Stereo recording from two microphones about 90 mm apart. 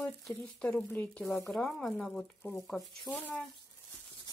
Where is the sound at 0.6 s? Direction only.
15° left (ahead or behind).